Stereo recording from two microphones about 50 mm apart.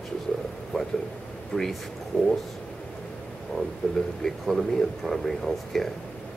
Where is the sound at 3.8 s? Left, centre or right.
Left.